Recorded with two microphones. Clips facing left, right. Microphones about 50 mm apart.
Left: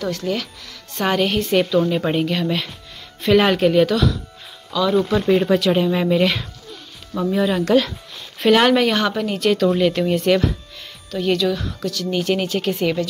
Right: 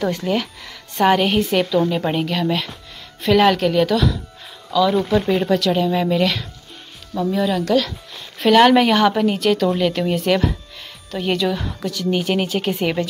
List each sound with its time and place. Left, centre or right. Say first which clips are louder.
0.0 s speech: right 3 dB; right; by 7.9 s centre
8.4 s speech: right 2 dB; centre
11.1 s speech: left 1 dB; centre